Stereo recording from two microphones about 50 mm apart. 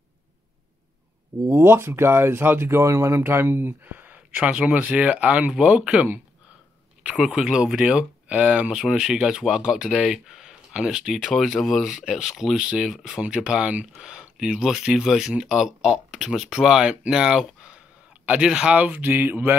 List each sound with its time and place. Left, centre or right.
1.5 s speech: right
4.3 s speech: right
7.2 s speech: centre
11.4 s speech: centre
13.2 s speech: centre
18.2 s speech: right
18.8 s a sound: right